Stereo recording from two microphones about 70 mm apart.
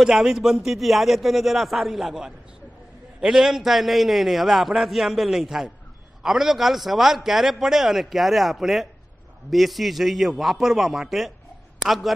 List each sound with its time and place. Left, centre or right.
0.0 s a man's voice: centre